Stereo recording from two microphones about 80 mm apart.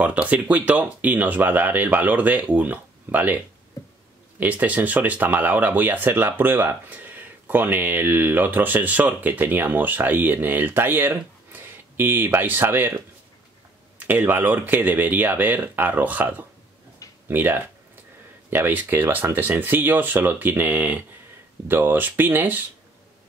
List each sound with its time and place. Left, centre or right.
0.0 s speech: centre
4.4 s speech: centre
13.9 s speech: right